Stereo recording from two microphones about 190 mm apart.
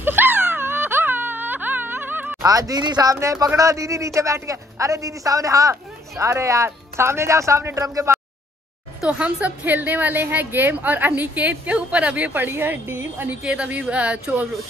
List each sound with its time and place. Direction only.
0.0 s a woman's voice: 10° right (ahead or behind)